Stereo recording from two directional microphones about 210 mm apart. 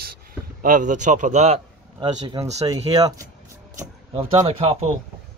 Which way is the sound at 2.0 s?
20° right (ahead or behind).